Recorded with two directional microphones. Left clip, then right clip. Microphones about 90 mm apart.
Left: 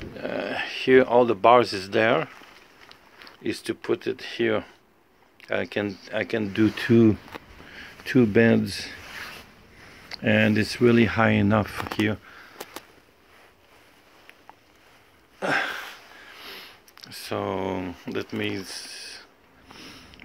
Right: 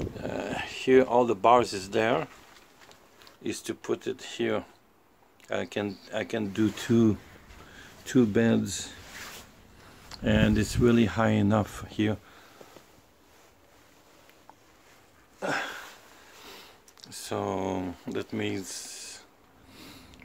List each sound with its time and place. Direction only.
0.1 s speech: centre (ahead or behind)
10.0 s speech: 30° right (ahead or behind)
15.3 s a sound: 15° left (ahead or behind)
16.4 s sniff: 15° right (ahead or behind)
16.9 s a sound: 5° right (ahead or behind)
19.8 s sniff: 20° right (ahead or behind)